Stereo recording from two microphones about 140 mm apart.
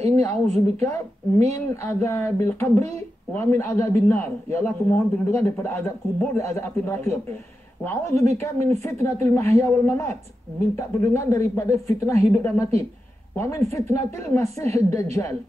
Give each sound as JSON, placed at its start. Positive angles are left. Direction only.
{"t": 0.3, "sound": "a woman's voice", "side_deg": -55}
{"t": 1.5, "sound": "a man's voice", "side_deg": 20}